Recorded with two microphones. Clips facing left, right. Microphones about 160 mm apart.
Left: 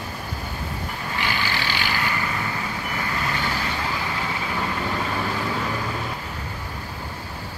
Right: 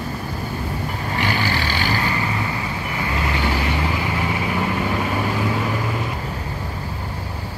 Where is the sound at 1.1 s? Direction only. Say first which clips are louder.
Right 5 dB; 40° right (ahead or behind).